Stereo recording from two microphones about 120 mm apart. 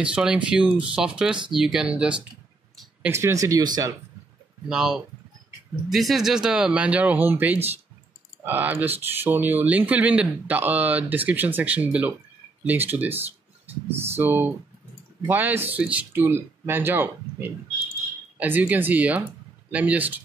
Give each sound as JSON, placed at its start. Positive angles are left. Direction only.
{"t": 0.0, "sound": "speech", "side_deg": -10}
{"t": 3.1, "sound": "speech", "side_deg": -25}
{"t": 4.6, "sound": "speech", "side_deg": -5}